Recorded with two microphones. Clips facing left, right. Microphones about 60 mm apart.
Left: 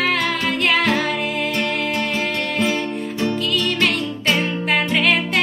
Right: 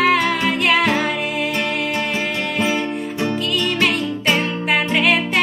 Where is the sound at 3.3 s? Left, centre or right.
Centre.